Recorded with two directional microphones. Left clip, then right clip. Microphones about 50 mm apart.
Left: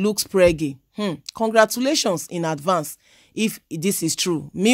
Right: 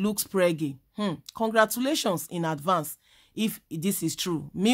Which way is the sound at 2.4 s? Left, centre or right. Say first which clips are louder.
Left 4 dB; left.